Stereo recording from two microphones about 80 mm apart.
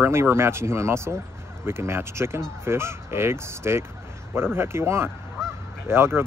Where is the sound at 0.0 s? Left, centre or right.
Right.